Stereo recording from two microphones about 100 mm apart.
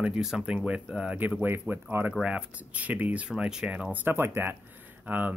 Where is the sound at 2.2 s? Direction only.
10° right (ahead or behind).